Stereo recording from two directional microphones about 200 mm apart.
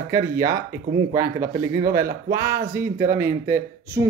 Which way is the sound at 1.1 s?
15° right (ahead or behind).